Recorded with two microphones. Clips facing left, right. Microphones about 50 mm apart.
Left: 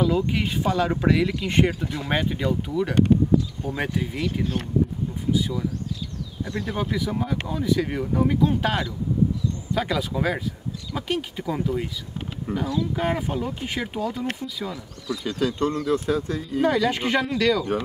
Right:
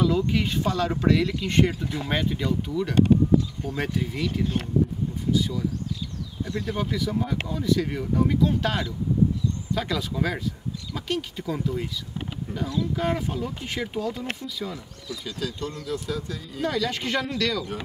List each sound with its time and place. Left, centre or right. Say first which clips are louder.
0.0 s speech: left 1 dB; centre
6.7 s speech: left 1 dB; centre
12.5 s speech: left 3 dB; centre
12.9 s speech: left 1 dB; centre
15.2 s speech: left 8 dB; left
16.6 s speech: left 4 dB; centre